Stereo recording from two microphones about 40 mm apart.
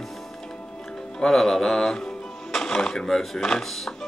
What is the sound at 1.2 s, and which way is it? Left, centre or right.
Speech, centre.